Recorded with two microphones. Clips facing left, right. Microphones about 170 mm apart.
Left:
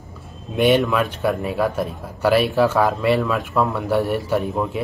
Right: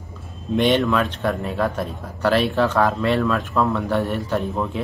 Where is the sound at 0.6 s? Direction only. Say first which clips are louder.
Left 1 dB; 10° left (ahead or behind).